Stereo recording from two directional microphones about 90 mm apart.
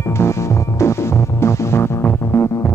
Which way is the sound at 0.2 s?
30° left (ahead or behind).